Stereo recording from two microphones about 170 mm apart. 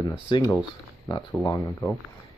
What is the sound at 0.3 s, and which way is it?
Speech, 25° left (ahead or behind).